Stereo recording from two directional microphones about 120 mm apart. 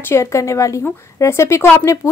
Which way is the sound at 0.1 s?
25° left (ahead or behind).